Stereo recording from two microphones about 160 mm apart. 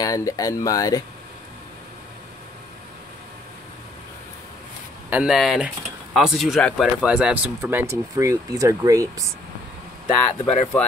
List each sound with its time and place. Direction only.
0.0 s speech: 20° left (ahead or behind)
5.1 s speech: 5° right (ahead or behind)
7.9 s speech: 20° right (ahead or behind)
10.4 s speech: 45° left (ahead or behind)